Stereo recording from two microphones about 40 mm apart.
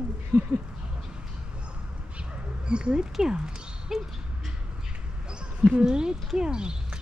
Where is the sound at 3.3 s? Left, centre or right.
Centre.